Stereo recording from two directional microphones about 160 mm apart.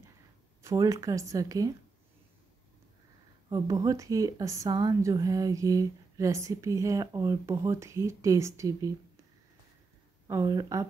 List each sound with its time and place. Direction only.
0.6 s a woman's voice: 20° right (ahead or behind)
3.4 s a woman's voice: 20° right (ahead or behind)
10.2 s a woman's voice: 25° right (ahead or behind)